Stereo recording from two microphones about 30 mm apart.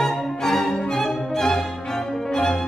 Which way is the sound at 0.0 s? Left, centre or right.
Centre.